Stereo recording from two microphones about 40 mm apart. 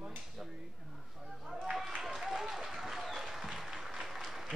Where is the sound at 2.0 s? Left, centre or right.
Centre.